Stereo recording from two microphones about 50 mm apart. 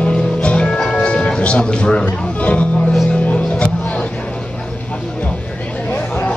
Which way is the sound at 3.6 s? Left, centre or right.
Left.